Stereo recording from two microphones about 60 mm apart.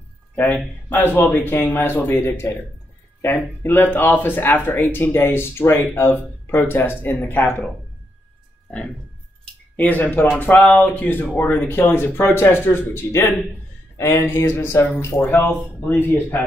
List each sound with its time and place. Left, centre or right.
0.8 s speech: left
9.8 s speech: left
15.4 s speech: left